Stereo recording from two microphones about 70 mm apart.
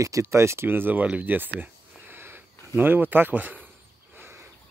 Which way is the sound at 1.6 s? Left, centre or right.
Right.